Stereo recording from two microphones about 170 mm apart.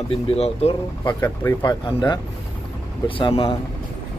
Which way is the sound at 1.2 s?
15° left (ahead or behind).